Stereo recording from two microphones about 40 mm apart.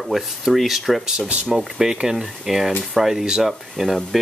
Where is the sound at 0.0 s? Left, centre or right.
Centre.